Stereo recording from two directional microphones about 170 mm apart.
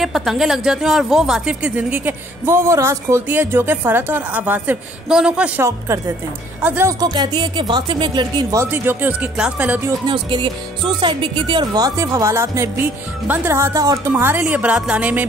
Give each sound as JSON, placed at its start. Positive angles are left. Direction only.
{"t": 0.0, "sound": "speech", "side_deg": 0}
{"t": 8.6, "sound": "speech", "side_deg": -10}
{"t": 10.0, "sound": "speech", "side_deg": -25}